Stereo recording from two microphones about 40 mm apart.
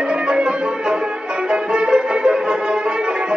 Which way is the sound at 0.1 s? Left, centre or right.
Right.